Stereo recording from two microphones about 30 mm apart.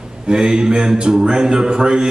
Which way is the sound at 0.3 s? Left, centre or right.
Right.